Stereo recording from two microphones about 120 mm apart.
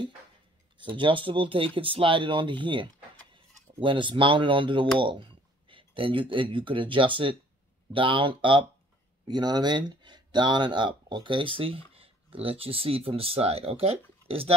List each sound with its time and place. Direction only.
0.7 s speech: 45° right (ahead or behind)